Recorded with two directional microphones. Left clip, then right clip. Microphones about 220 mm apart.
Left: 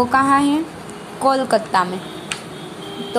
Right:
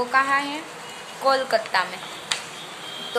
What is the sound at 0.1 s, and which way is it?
A woman's voice, 20° left (ahead or behind).